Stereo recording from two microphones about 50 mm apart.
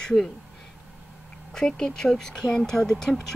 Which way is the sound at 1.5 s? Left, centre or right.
Centre.